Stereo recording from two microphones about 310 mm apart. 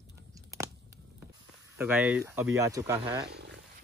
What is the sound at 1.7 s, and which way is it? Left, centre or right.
Speech, centre.